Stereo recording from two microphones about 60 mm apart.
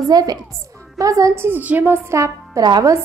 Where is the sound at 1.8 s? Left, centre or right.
Right.